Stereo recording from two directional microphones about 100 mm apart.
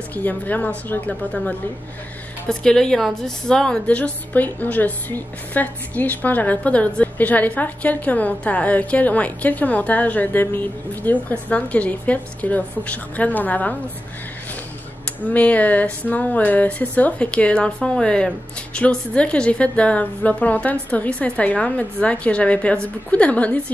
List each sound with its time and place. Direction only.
0.1 s a woman's voice: 15° left (ahead or behind)
15.2 s a woman's voice: 15° left (ahead or behind)